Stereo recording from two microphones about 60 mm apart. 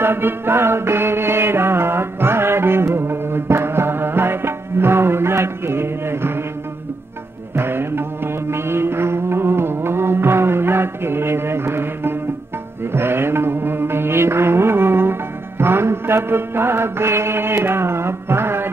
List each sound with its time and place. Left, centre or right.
0.0 s music: right
7.5 s music: right